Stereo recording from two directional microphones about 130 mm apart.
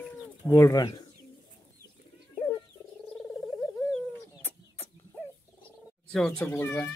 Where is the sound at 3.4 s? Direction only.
20° left (ahead or behind).